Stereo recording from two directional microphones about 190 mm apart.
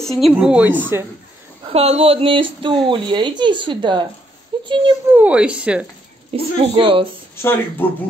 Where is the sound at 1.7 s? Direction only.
30° right (ahead or behind).